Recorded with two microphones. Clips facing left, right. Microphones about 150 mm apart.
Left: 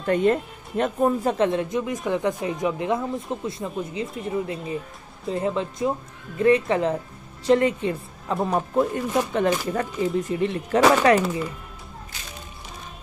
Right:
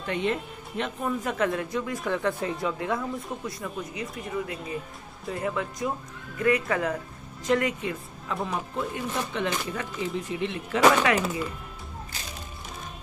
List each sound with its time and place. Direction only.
0.0 s speech: 45° left (ahead or behind)